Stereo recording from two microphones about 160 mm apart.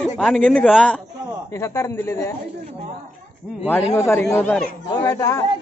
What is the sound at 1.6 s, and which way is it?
Speech, 20° left (ahead or behind).